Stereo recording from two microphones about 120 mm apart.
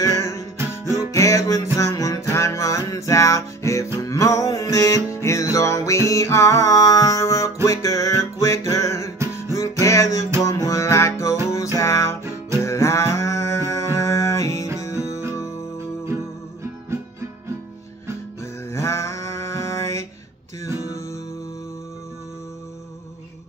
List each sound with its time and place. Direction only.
0.0 s music: 25° left (ahead or behind)
12.6 s a sound: 25° left (ahead or behind)
14.8 s music: 25° left (ahead or behind)
18.4 s music: 25° left (ahead or behind)